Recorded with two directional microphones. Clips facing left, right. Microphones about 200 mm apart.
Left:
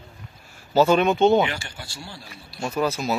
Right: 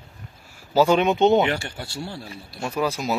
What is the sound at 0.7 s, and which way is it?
Speech, 15° right (ahead or behind).